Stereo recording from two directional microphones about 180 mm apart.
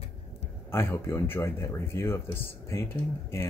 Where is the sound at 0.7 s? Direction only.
15° left (ahead or behind).